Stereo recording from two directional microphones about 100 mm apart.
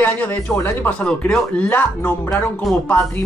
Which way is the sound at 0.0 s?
15° left (ahead or behind).